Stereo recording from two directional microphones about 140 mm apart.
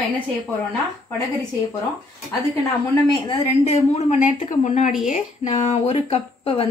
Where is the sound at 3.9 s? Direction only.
55° left (ahead or behind).